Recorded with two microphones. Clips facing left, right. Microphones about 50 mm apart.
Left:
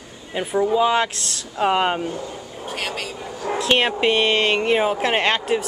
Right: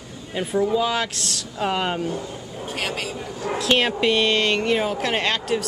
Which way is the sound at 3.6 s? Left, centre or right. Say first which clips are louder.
Left 1 dB; centre.